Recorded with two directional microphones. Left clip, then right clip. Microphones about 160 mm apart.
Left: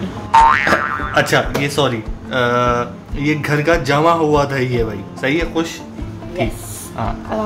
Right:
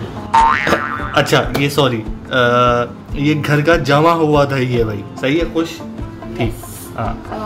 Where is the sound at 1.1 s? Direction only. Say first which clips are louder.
Right 2 dB; 15° right (ahead or behind).